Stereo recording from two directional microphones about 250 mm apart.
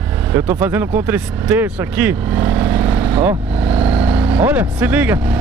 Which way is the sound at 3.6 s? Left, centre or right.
Right.